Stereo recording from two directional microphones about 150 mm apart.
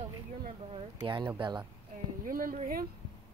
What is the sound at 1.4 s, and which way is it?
Speech, 30° right (ahead or behind).